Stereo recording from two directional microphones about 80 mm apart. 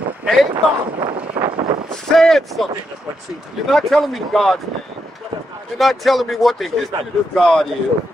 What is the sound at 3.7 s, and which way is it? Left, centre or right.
Speech, centre.